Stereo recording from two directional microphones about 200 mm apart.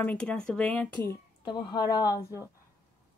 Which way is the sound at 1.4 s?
20° left (ahead or behind).